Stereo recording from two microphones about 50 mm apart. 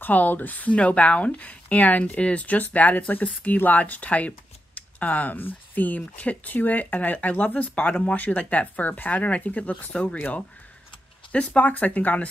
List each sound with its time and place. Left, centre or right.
0.0 s speech: left
11.3 s speech: left